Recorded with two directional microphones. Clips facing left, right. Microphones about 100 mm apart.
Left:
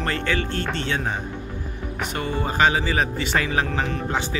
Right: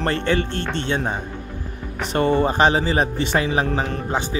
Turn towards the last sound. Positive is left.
turn(degrees=-25)  # may be behind; listen again after turning